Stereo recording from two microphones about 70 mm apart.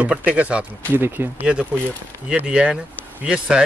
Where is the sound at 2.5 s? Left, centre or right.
Centre.